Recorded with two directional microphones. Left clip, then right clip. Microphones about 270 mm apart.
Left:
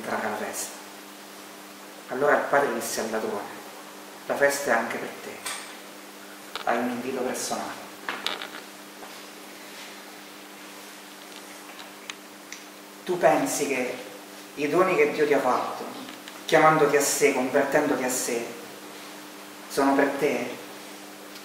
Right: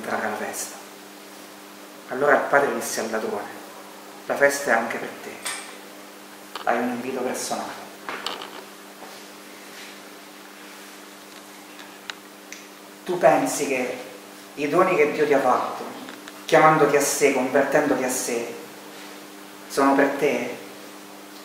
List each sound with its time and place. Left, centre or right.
0.0 s a sound: centre
2.0 s speech: centre
4.3 s speech: centre
6.6 s speech: centre
13.2 s speech: centre
19.7 s speech: centre